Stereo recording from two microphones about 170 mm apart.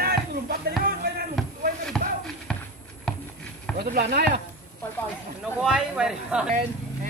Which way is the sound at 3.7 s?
60° right (ahead or behind).